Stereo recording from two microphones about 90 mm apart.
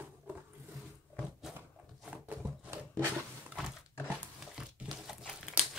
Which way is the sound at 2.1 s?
15° right (ahead or behind).